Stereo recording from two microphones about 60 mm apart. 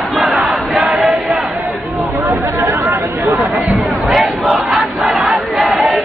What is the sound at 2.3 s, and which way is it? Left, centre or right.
Chatter, right.